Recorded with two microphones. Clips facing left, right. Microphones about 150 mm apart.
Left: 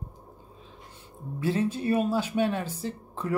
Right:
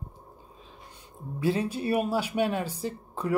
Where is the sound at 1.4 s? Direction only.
15° right (ahead or behind).